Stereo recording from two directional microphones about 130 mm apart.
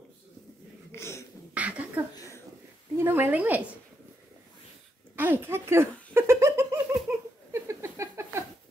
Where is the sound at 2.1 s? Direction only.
25° left (ahead or behind).